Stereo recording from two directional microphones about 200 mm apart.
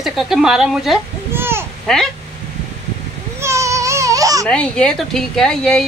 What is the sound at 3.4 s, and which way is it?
Baby cry, 15° right (ahead or behind).